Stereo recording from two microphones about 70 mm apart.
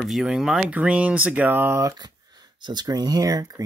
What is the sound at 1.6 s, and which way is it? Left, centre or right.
Speech, right.